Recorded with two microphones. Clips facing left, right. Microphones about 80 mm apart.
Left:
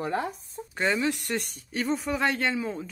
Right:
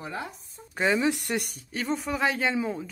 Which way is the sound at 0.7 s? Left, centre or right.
Centre.